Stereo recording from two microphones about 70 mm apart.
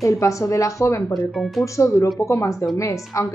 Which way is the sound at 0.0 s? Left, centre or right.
Left.